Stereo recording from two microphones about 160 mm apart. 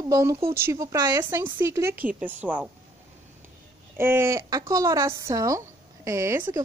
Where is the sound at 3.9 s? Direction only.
15° right (ahead or behind).